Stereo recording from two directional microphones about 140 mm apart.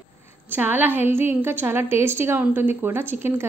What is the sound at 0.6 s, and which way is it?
A woman's voice, 15° right (ahead or behind).